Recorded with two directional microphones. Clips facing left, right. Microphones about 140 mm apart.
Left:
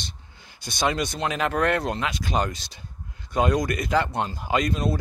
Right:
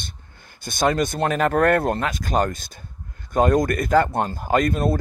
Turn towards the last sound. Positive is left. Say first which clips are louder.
# right 4 dB
turn(degrees=-50)  # may be behind; listen again after turning